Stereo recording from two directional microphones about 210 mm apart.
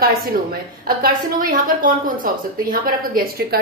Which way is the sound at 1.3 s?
40° right (ahead or behind).